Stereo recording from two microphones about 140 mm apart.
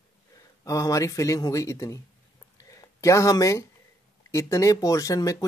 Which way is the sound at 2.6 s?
25° left (ahead or behind).